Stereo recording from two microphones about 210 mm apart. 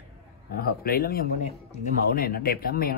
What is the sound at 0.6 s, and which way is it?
Speech, 45° left (ahead or behind).